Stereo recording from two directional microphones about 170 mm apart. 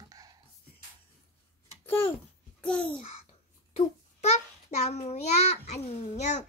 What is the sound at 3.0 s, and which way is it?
Babbling, 40° left (ahead or behind).